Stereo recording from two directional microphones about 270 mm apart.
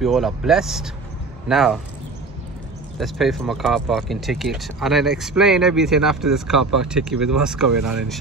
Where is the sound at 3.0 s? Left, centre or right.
Centre.